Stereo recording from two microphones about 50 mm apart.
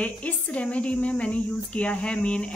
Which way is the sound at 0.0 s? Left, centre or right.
Left.